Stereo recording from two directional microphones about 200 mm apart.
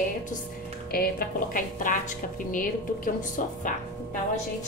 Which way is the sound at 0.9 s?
45° left (ahead or behind).